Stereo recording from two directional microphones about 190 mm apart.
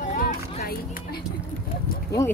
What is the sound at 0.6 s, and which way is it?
Speech, 55° left (ahead or behind).